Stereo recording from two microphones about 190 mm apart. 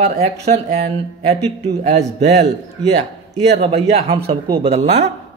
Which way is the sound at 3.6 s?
30° right (ahead or behind).